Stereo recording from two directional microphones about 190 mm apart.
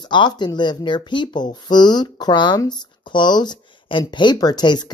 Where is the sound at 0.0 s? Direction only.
25° left (ahead or behind).